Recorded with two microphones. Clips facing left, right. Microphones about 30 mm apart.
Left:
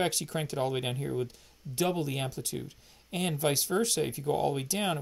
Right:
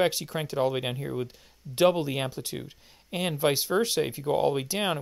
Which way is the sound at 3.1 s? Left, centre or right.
Centre.